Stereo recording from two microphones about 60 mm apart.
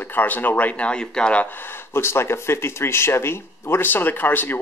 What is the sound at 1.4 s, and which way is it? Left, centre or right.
Speech, left.